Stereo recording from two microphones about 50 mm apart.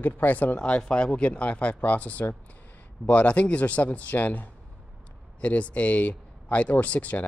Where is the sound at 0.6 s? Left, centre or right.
Left.